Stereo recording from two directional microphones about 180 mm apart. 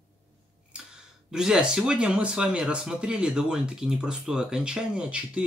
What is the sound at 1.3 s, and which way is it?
Speech, 5° right (ahead or behind).